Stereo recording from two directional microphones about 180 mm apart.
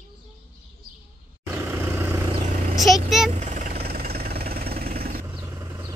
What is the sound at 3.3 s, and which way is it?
Vehicle, 40° right (ahead or behind).